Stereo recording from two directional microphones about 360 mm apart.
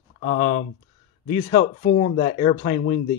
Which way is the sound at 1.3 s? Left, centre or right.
Centre.